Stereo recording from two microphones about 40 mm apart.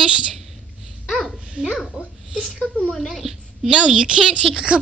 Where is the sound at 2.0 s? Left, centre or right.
Right.